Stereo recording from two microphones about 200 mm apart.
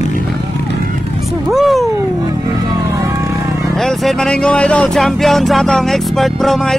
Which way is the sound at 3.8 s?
Centre (ahead or behind).